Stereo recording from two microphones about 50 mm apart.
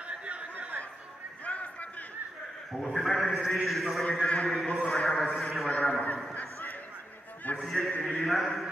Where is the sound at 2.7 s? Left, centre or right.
Centre.